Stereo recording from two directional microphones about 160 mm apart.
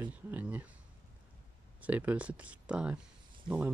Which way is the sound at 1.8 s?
10° right (ahead or behind).